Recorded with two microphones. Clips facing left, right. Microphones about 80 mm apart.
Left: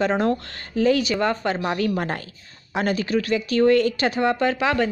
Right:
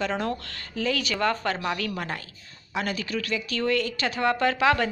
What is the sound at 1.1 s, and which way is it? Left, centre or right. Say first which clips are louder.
Speech: left 3 dB; centre.